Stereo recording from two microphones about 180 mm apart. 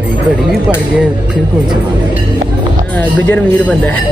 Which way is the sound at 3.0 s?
10° left (ahead or behind).